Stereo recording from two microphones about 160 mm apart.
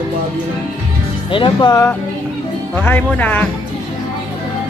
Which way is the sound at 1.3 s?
30° left (ahead or behind).